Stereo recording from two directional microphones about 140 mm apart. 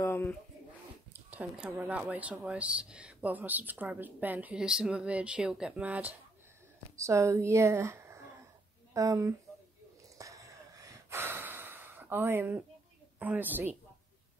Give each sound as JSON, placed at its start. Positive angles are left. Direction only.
{"t": 0.0, "sound": "pigeon", "side_deg": 15}
{"t": 1.1, "sound": "speech", "side_deg": -10}
{"t": 7.0, "sound": "speech", "side_deg": -20}
{"t": 10.1, "sound": "gasp", "side_deg": -25}
{"t": 13.2, "sound": "speech", "side_deg": -10}